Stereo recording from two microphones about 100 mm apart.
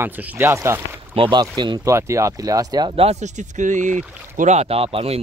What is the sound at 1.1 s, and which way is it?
Speech, 55° right (ahead or behind).